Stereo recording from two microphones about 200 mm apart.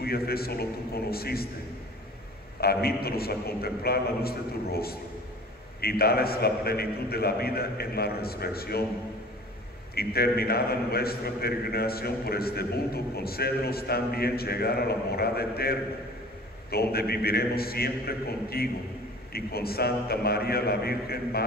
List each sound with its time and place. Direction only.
0.0 s a man's voice: 50° left (ahead or behind)
2.6 s a man's voice: 50° left (ahead or behind)
9.9 s a man's voice: 50° left (ahead or behind)